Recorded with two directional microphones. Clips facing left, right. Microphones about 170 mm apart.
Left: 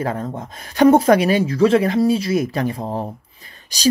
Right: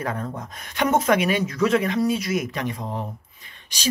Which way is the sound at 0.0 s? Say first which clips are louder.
Left 5 dB; 30° left (ahead or behind).